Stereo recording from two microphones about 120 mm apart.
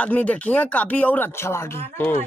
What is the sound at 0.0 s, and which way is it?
Speech, 10° left (ahead or behind).